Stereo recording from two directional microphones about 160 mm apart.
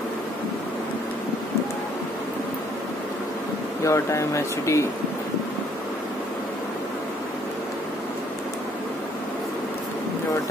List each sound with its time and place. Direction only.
3.8 s speech: 20° left (ahead or behind)